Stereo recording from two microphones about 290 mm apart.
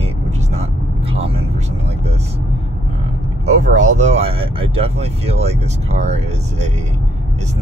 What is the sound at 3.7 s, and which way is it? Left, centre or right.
Speech, right.